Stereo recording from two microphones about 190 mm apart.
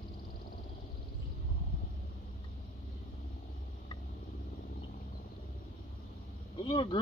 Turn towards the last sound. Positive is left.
turn(degrees=25)  # may be behind; listen again after turning